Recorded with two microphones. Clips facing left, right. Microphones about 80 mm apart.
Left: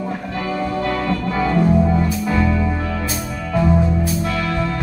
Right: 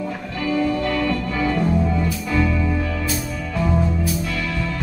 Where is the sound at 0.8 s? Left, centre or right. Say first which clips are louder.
Left 1 dB; left.